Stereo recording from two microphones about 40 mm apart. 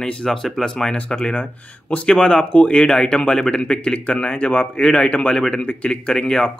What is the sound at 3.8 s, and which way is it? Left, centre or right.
Speech, left.